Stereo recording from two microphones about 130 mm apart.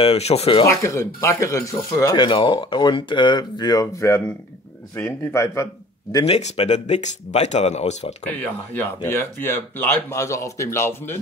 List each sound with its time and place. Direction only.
0.0 s speech: 50° left (ahead or behind)
0.7 s speech: 20° left (ahead or behind)
2.2 s speech: 40° left (ahead or behind); by 5.7 s 20° left (ahead or behind)
6.2 s speech: 50° left (ahead or behind)
8.3 s speech: 15° left (ahead or behind)